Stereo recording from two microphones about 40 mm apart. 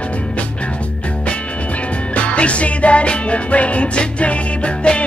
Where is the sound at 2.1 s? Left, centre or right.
Left.